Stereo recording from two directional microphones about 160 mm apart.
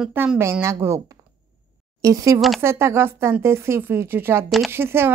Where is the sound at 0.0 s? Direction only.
10° right (ahead or behind).